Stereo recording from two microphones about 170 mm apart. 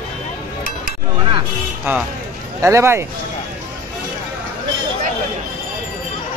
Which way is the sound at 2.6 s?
15° right (ahead or behind).